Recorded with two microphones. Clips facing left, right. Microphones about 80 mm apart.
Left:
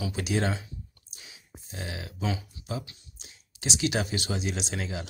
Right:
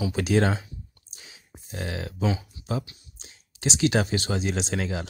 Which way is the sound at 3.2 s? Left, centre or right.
Right.